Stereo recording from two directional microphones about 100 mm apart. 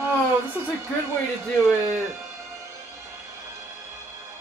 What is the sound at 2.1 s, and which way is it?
Music, 30° right (ahead or behind).